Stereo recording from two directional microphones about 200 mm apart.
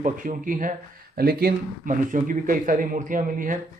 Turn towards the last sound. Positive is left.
turn(degrees=-40)  # may be behind; listen again after turning